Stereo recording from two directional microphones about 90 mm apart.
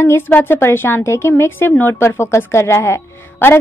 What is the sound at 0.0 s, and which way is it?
A woman's voice, 25° left (ahead or behind).